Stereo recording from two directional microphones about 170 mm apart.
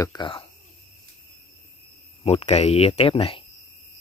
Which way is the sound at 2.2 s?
40° left (ahead or behind).